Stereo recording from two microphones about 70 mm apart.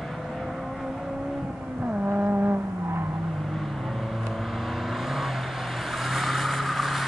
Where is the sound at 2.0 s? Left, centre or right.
Right.